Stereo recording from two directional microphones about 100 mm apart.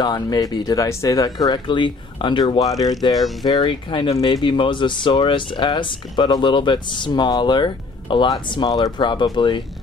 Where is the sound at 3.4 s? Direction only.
50° left (ahead or behind).